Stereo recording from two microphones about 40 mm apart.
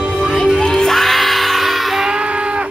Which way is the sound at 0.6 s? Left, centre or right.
Centre.